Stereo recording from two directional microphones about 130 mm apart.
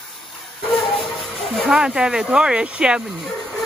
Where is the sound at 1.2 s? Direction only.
Centre (ahead or behind).